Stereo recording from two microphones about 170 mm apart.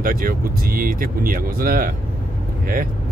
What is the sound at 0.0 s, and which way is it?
Speech, 55° right (ahead or behind).